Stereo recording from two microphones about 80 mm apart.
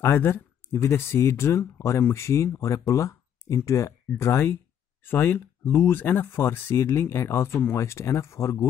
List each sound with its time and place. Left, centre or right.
0.0 s speech: left